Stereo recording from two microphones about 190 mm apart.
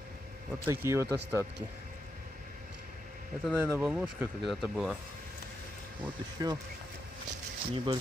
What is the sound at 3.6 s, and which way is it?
Speech, 10° right (ahead or behind).